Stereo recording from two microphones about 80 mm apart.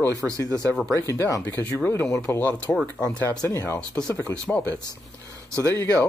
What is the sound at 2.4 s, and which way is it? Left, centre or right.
Speech, centre.